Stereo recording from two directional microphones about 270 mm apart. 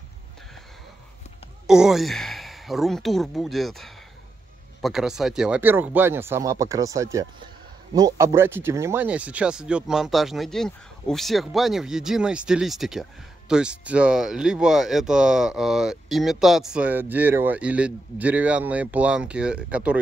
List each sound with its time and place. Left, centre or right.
1.7 s speech: centre